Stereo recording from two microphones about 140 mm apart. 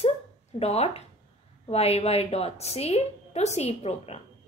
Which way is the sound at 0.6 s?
50° left (ahead or behind).